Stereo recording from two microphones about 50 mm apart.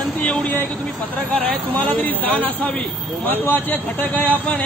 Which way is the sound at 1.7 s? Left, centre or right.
Left.